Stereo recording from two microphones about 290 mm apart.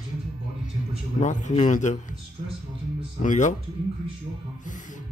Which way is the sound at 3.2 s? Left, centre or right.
Left.